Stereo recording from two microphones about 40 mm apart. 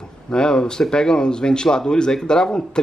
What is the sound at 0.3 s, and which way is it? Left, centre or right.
Speech, centre.